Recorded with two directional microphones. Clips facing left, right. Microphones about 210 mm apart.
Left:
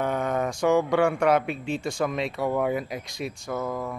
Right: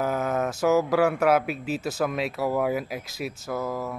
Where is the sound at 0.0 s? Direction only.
5° right (ahead or behind).